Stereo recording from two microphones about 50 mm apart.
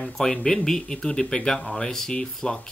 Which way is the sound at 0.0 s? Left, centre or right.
Centre.